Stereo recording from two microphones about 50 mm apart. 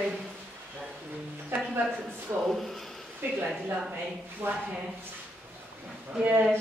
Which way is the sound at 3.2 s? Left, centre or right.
Right.